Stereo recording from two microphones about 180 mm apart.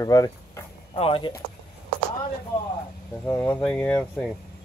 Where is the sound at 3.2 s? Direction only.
10° left (ahead or behind).